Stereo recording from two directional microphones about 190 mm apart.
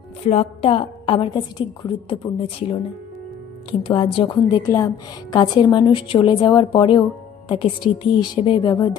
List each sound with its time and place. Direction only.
0.2 s a woman's voice: 35° left (ahead or behind)
3.8 s a woman's voice: 25° left (ahead or behind)
4.6 s a woman's voice: 15° left (ahead or behind)